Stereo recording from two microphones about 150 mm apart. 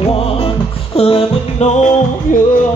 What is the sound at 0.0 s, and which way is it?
Music, 40° left (ahead or behind).